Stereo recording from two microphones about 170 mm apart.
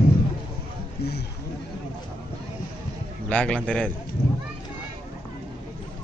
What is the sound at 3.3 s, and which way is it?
Speech, 5° left (ahead or behind).